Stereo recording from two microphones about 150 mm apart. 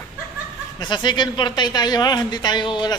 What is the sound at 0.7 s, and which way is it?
A man's voice, 30° left (ahead or behind).